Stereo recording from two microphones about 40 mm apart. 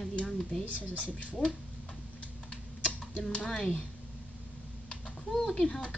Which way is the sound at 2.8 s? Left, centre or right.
Left.